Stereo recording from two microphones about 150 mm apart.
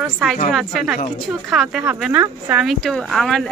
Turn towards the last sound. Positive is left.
turn(degrees=0)  # may be behind; listen again after turning